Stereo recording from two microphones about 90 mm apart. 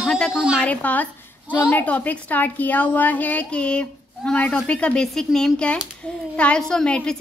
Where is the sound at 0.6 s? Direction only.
15° left (ahead or behind).